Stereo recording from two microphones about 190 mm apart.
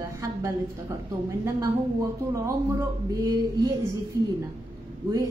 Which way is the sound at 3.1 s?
20° right (ahead or behind).